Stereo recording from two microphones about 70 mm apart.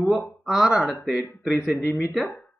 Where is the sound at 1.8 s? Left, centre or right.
Left.